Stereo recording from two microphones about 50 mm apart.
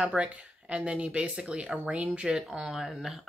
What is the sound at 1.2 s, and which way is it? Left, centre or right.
Speech, centre.